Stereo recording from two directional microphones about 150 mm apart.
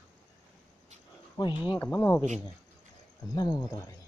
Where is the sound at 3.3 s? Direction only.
25° left (ahead or behind).